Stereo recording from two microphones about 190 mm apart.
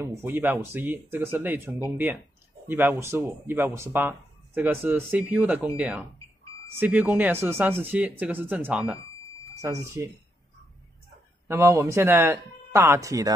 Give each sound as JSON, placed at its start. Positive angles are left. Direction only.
{"t": 0.0, "sound": "speech", "side_deg": -10}
{"t": 11.4, "sound": "speech", "side_deg": -15}